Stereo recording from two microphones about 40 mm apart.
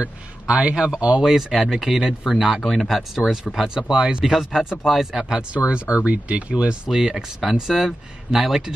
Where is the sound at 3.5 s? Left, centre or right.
Left.